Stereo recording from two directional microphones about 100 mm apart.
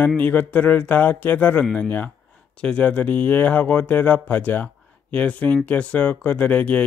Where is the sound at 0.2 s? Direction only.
15° left (ahead or behind).